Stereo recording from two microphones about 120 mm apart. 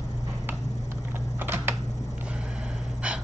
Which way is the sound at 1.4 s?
20° right (ahead or behind).